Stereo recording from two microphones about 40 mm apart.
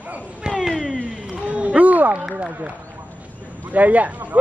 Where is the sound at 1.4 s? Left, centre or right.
Right.